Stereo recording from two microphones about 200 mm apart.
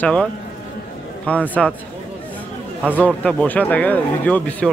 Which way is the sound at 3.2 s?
5° left (ahead or behind).